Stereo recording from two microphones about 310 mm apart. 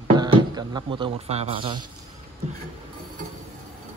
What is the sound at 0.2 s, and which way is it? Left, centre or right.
Speech, centre.